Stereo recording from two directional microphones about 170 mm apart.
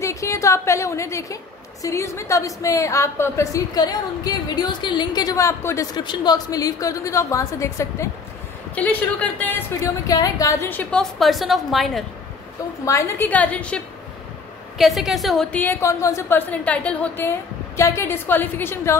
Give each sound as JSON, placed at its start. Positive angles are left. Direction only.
{"t": 0.0, "sound": "a woman's voice", "side_deg": 20}
{"t": 10.0, "sound": "a woman's voice", "side_deg": 20}
{"t": 12.8, "sound": "a woman's voice", "side_deg": 15}
{"t": 14.8, "sound": "a woman's voice", "side_deg": 0}